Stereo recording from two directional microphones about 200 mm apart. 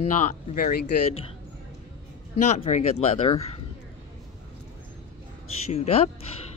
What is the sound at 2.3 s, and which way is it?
Speech, 35° left (ahead or behind).